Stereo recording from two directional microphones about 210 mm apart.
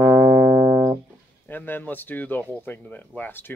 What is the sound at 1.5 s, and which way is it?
Speech, 10° left (ahead or behind).